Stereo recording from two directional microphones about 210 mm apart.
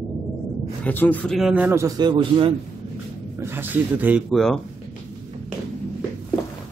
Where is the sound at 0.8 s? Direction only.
10° left (ahead or behind); by 2.5 s 20° right (ahead or behind).